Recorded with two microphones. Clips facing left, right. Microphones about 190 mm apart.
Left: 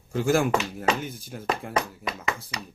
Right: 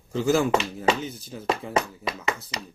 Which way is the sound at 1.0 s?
10° left (ahead or behind).